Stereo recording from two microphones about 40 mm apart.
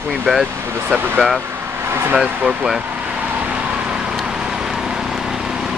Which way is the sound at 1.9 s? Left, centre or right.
Right.